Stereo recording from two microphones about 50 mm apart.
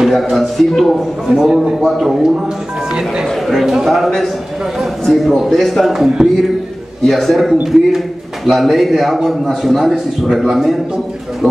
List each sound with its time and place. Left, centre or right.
0.0 s a man's voice: centre
1.2 s a man's voice: centre
3.3 s a man's voice: centre
5.9 s speech: centre
7.1 s a man's voice: centre